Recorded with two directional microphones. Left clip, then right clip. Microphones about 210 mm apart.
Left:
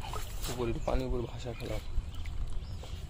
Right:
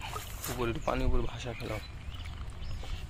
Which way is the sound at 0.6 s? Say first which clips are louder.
Right 2 dB; centre (ahead or behind).